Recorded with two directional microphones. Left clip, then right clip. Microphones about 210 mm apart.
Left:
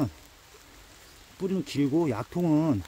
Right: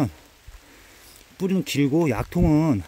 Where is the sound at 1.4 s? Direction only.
40° right (ahead or behind).